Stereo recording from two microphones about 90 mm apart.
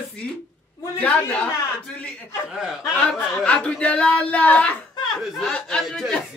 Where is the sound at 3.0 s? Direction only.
15° left (ahead or behind).